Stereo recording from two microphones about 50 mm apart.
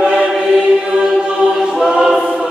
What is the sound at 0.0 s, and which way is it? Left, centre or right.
Choir, centre.